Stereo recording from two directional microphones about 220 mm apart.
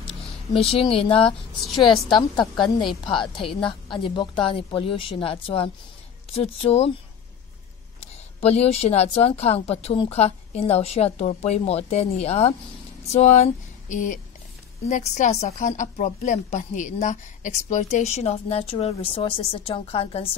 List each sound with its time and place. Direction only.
0.0 s speech: 25° left (ahead or behind)
1.6 s a woman's voice: centre (ahead or behind)
3.1 s a woman's voice: 25° left (ahead or behind)
8.4 s a woman's voice: 30° left (ahead or behind)